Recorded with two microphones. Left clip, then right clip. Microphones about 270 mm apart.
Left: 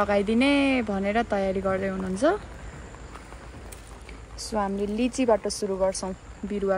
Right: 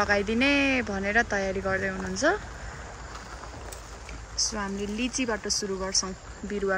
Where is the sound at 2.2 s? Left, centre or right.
Left.